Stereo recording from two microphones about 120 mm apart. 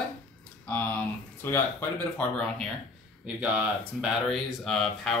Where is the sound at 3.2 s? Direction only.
10° right (ahead or behind).